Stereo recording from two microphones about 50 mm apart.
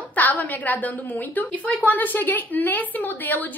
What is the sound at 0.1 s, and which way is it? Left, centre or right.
A woman's voice, left.